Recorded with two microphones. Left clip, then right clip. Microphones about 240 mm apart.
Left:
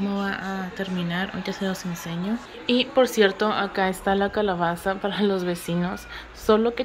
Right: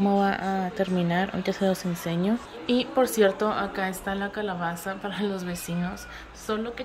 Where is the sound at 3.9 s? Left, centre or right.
Left.